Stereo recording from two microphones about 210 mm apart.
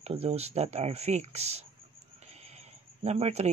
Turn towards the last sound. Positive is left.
turn(degrees=-30)  # may be behind; listen again after turning